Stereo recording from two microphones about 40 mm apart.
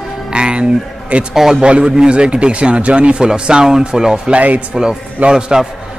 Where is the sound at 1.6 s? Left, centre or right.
Right.